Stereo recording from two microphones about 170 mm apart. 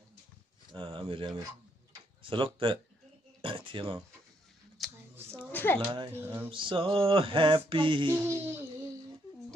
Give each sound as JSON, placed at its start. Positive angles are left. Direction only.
{"t": 0.7, "sound": "speech", "side_deg": -30}
{"t": 4.8, "sound": "a sound", "side_deg": 0}
{"t": 5.5, "sound": "a sound", "side_deg": 10}
{"t": 5.8, "sound": "music", "side_deg": -30}
{"t": 6.1, "sound": "speech", "side_deg": -15}
{"t": 6.5, "sound": "music", "side_deg": -30}